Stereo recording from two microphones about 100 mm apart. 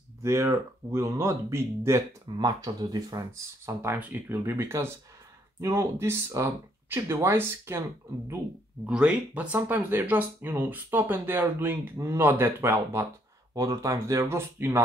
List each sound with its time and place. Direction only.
0.2 s speech: 25° right (ahead or behind)
2.3 s speech: 40° right (ahead or behind)
8.8 s speech: 10° right (ahead or behind)